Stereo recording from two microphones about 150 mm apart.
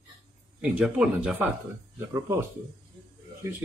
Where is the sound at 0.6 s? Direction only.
5° right (ahead or behind).